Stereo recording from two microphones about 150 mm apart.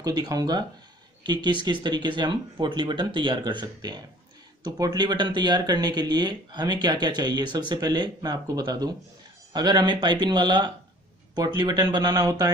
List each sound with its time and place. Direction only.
0.0 s speech: 25° right (ahead or behind)